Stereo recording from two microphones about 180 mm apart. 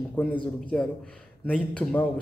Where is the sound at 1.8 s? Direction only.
5° left (ahead or behind).